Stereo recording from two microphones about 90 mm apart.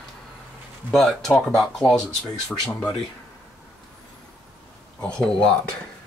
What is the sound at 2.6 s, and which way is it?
Speech, 15° left (ahead or behind).